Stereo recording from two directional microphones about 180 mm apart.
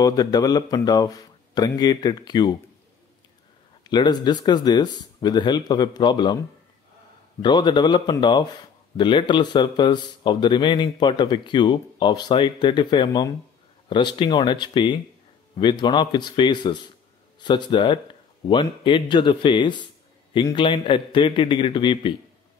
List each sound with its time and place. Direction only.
0.0 s a man's voice: 20° left (ahead or behind)
3.8 s a man's voice: 25° left (ahead or behind)
7.4 s a man's voice: 25° left (ahead or behind)